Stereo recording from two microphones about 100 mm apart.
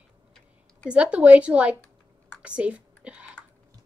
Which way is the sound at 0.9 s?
10° right (ahead or behind).